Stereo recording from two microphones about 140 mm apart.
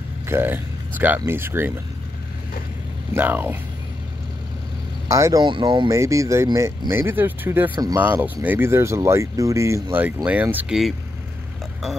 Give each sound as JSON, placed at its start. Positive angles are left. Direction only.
{"t": 0.3, "sound": "speech", "side_deg": -15}
{"t": 3.2, "sound": "speech", "side_deg": -15}
{"t": 5.0, "sound": "speech", "side_deg": -20}
{"t": 5.4, "sound": "speech", "side_deg": -35}
{"t": 5.9, "sound": "speech", "side_deg": -20}
{"t": 7.7, "sound": "speech", "side_deg": -25}
{"t": 8.0, "sound": "speech", "side_deg": -15}